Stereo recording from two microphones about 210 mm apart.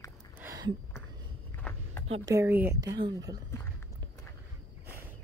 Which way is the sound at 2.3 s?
10° right (ahead or behind).